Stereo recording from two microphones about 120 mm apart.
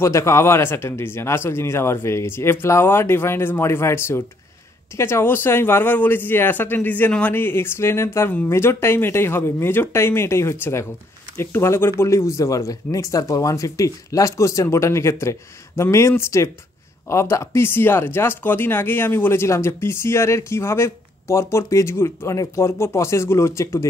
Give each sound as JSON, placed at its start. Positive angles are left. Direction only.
{"t": 0.0, "sound": "speech", "side_deg": 25}